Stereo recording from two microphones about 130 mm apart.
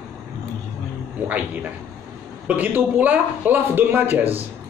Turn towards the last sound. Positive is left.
turn(degrees=-15)  # may be behind; listen again after turning